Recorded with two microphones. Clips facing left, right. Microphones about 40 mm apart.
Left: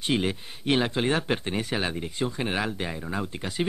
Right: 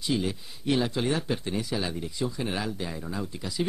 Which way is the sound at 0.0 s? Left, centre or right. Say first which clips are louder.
Left 2 dB; left.